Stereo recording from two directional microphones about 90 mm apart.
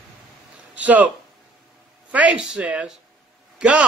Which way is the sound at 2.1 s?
15° right (ahead or behind).